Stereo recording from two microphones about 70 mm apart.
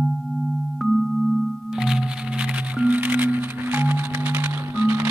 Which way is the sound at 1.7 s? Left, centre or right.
Centre.